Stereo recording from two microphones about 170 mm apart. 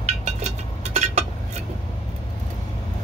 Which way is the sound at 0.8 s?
40° right (ahead or behind).